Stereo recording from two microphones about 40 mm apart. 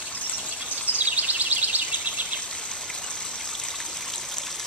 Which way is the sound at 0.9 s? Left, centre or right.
Right.